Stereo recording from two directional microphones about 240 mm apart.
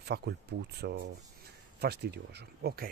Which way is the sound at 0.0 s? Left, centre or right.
Right.